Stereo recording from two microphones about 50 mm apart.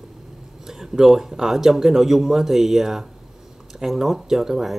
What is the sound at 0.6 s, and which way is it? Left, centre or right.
Speech, centre.